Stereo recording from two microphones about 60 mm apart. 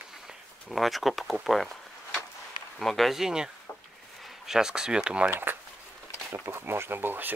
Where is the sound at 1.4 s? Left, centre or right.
Centre.